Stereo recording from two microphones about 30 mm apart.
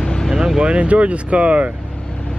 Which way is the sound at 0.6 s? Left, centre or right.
Right.